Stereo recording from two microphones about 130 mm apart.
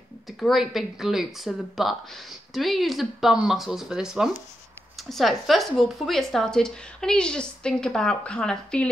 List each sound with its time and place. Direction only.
0.4 s speech: centre (ahead or behind)